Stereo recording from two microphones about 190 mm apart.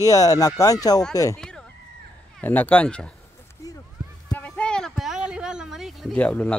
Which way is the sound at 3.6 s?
15° left (ahead or behind).